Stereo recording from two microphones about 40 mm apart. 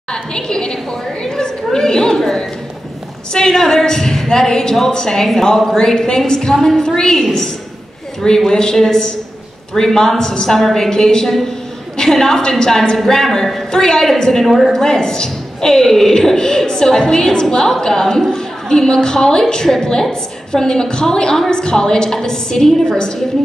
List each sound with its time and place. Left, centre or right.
0.1 s a sound: centre
1.2 s chatter: centre
3.3 s a woman's voice: centre
8.5 s a woman's voice: centre
14.4 s a woman's voice: centre
14.8 s a woman's voice: centre